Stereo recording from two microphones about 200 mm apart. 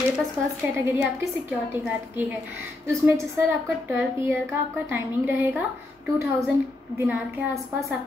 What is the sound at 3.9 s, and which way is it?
A woman's voice, 10° right (ahead or behind).